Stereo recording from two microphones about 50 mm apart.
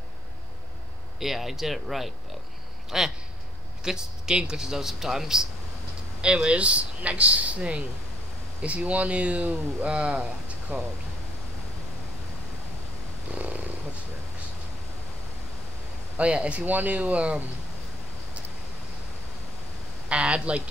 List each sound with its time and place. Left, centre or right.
1.2 s a man's voice: centre
6.2 s speech: centre
10.7 s speech: right
13.3 s purr: right
16.2 s speech: right
16.6 s speech: right
20.1 s speech: right